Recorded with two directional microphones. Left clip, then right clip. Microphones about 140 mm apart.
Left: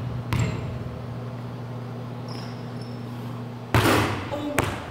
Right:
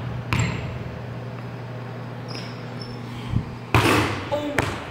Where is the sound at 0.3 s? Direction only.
5° left (ahead or behind).